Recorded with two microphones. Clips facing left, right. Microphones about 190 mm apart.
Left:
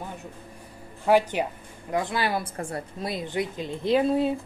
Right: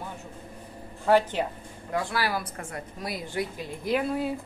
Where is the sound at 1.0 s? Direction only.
10° left (ahead or behind).